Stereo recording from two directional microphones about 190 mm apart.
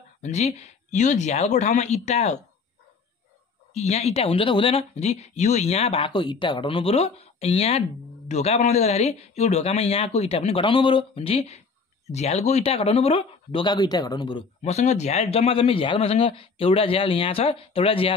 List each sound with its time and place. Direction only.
0.2 s speech: 35° left (ahead or behind)
3.7 s speech: 35° left (ahead or behind)
14.6 s speech: 35° left (ahead or behind)